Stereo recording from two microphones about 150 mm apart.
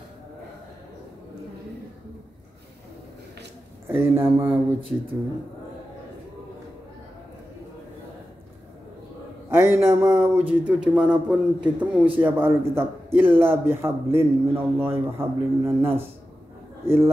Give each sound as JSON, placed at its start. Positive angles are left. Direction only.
{"t": 3.9, "sound": "a man's voice", "side_deg": -15}
{"t": 9.5, "sound": "a man's voice", "side_deg": -15}